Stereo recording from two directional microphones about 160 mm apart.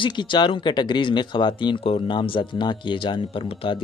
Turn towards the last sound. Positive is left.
turn(degrees=35)  # may be behind; listen again after turning